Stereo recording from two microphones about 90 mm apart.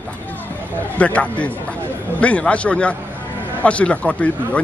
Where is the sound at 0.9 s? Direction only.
15° left (ahead or behind).